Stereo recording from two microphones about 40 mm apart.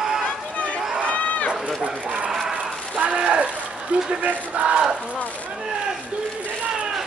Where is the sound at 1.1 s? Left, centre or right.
Left.